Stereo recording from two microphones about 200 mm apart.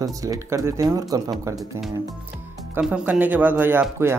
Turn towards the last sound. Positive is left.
turn(degrees=-10)  # may be behind; listen again after turning